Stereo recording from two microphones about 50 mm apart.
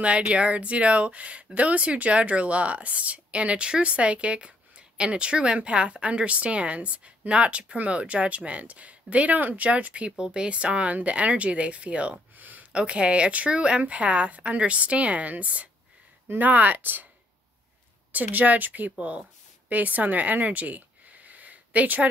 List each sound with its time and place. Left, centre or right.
0.3 s speech: right
12.7 s a woman's voice: right
18.1 s a woman's voice: right